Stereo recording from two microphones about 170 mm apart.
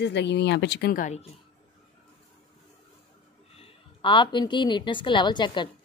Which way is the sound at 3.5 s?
30° left (ahead or behind).